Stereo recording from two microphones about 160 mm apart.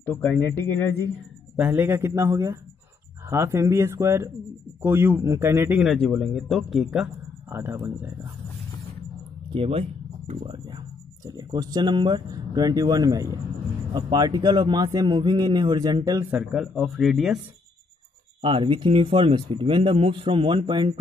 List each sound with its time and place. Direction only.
0.0 s speech: 10° left (ahead or behind)
1.6 s speech: 15° right (ahead or behind)
5.8 s speech: centre (ahead or behind)
7.4 s speech: 15° right (ahead or behind)
9.5 s a man's voice: 35° right (ahead or behind)
16.3 s speech: centre (ahead or behind)
18.4 s speech: 35° right (ahead or behind)